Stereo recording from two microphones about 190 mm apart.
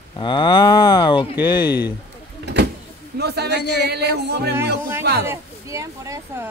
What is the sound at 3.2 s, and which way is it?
Music, 60° right (ahead or behind).